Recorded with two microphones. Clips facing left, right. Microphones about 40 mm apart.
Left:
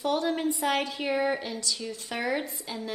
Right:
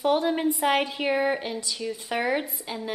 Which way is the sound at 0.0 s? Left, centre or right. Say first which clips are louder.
Right 4 dB; centre.